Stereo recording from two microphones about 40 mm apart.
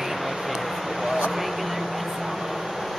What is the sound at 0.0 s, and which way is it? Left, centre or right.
Vehicle, centre.